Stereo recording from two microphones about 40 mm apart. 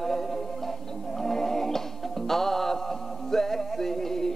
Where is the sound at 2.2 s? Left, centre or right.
Centre.